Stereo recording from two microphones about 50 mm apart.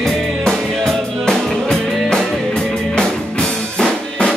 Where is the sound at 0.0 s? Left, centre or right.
Centre.